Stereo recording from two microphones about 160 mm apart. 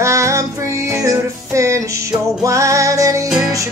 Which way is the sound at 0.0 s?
20° right (ahead or behind).